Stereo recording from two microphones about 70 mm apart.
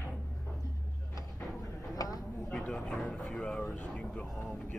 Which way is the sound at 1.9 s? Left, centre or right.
Left.